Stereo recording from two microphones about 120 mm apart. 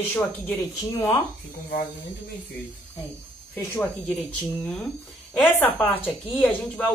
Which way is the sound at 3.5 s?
15° left (ahead or behind).